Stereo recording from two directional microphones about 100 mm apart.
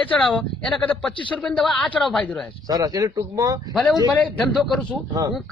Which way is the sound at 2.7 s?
35° right (ahead or behind).